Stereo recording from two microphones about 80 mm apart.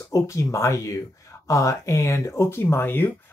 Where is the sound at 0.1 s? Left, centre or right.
Left.